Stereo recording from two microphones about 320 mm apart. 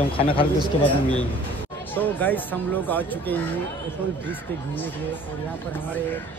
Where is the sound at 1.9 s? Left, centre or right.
Centre.